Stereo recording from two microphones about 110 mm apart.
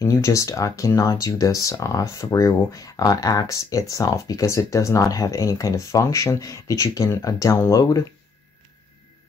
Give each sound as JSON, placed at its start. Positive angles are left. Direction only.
{"t": 0.0, "sound": "speech", "side_deg": 30}